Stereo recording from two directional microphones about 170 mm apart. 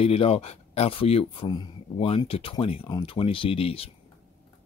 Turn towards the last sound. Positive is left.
turn(degrees=35)  # may be behind; listen again after turning